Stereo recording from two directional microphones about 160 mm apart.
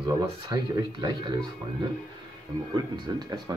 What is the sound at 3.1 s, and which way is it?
Speech, 25° right (ahead or behind).